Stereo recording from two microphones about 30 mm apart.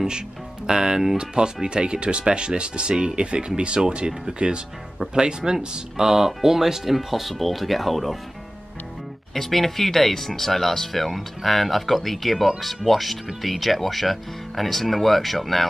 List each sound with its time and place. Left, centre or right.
0.7 s speech: right; by 8.2 s centre
9.3 s speech: centre